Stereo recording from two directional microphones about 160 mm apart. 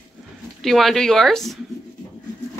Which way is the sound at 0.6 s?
Centre (ahead or behind).